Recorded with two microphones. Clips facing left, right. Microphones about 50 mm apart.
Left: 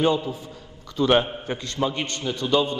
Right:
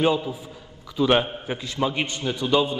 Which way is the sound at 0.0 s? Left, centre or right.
Centre.